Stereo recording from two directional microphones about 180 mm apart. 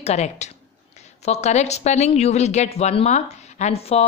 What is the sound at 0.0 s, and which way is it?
Speech, 40° left (ahead or behind).